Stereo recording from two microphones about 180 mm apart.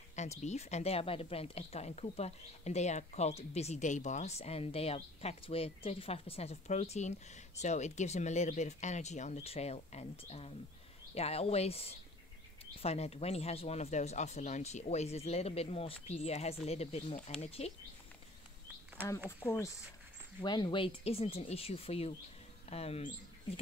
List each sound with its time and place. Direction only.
0.1 s speech: 40° left (ahead or behind)
19.0 s speech: 10° right (ahead or behind)
19.4 s speech: 10° left (ahead or behind)
20.4 s speech: 25° left (ahead or behind)